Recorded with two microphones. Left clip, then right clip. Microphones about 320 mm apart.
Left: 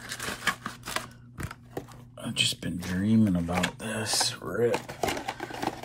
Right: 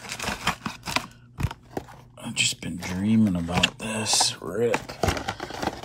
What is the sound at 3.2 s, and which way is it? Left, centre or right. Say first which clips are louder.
Speech: right 6 dB; centre.